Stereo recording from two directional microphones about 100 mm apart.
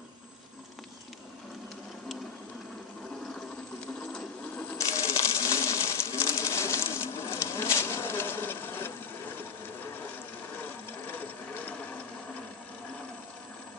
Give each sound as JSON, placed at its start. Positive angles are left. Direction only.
{"t": 3.8, "sound": "sewing machine", "side_deg": 10}
{"t": 4.7, "sound": "coin", "side_deg": 30}
{"t": 11.1, "sound": "ratchet", "side_deg": 15}